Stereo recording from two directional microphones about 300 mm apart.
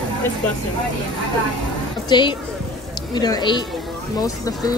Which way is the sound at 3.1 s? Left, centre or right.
Centre.